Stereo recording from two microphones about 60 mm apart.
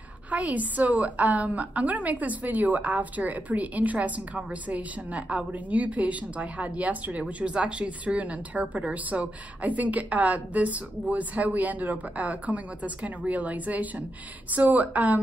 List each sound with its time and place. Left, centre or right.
0.3 s a woman's voice: right